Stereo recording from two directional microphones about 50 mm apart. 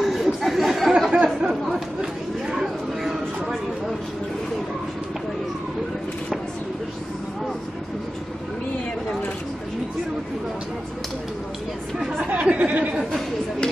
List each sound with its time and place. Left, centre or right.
0.0 s chatter: centre
1.1 s chatter: right
2.6 s a sound: centre
12.2 s chatter: right